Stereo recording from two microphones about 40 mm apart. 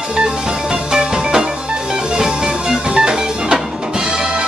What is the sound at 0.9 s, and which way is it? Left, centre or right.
Music, centre.